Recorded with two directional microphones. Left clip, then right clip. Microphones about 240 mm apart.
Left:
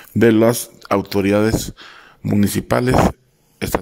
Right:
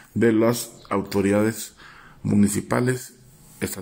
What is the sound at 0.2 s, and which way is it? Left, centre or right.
Speech, left.